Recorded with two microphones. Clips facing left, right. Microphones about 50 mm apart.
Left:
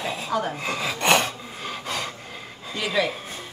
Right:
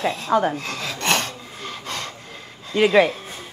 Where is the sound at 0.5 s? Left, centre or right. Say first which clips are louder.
Left 2 dB; centre.